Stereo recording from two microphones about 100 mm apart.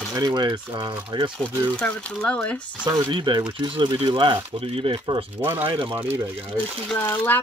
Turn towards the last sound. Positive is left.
turn(degrees=25)  # may be behind; listen again after turning